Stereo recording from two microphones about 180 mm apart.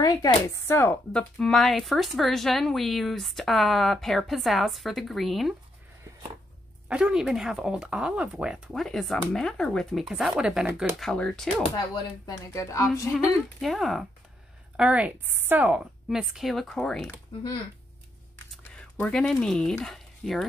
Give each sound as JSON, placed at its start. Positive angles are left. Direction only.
{"t": 0.0, "sound": "speech", "side_deg": 20}
{"t": 1.4, "sound": "speech", "side_deg": 0}
{"t": 6.9, "sound": "speech", "side_deg": -5}
{"t": 11.0, "sound": "speech", "side_deg": 5}
{"t": 11.9, "sound": "speech", "side_deg": 20}
{"t": 13.1, "sound": "speech", "side_deg": 0}
{"t": 18.5, "sound": "a sound", "side_deg": 5}
{"t": 19.8, "sound": "speech", "side_deg": 0}